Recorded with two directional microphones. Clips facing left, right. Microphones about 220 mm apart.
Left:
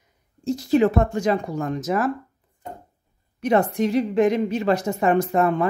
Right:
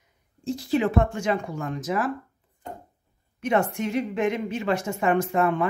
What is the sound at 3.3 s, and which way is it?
A woman's voice, 35° left (ahead or behind).